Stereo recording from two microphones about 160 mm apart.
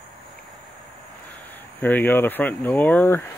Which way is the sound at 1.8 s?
10° left (ahead or behind).